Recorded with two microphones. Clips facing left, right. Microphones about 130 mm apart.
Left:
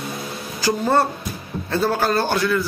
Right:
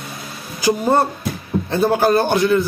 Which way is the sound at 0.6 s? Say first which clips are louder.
Right 2 dB; 20° right (ahead or behind).